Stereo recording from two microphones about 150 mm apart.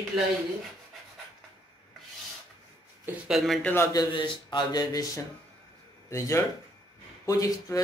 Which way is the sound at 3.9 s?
30° left (ahead or behind).